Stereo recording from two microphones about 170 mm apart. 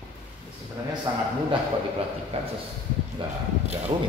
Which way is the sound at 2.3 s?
35° right (ahead or behind).